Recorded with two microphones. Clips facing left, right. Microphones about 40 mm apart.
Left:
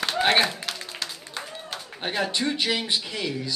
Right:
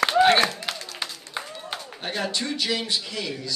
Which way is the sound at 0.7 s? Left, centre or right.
Centre.